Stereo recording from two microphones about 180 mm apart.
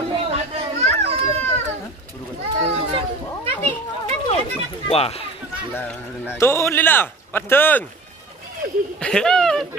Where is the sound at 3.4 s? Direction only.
35° right (ahead or behind).